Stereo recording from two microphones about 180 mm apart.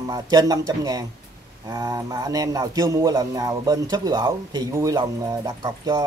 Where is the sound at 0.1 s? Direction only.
20° right (ahead or behind).